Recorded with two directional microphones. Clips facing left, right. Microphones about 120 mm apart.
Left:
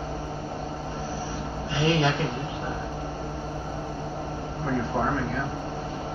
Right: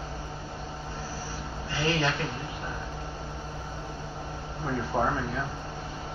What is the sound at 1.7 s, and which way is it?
Speech, 15° left (ahead or behind).